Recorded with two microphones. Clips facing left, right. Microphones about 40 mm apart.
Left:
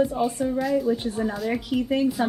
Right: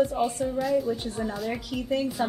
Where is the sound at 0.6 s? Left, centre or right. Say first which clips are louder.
Even; centre.